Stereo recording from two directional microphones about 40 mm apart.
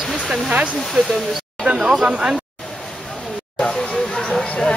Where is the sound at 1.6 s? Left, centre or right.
Right.